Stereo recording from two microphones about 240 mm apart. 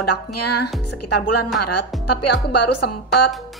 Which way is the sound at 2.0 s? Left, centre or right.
Left.